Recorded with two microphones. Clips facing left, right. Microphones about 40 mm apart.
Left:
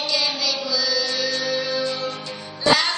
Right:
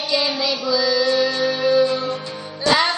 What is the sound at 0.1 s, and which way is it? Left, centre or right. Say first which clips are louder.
Music: right 5 dB; centre.